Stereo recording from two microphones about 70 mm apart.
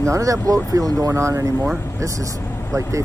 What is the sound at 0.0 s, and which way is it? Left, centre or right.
Speech, right.